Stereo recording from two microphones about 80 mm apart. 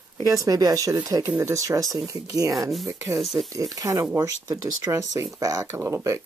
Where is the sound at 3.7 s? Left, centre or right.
Right.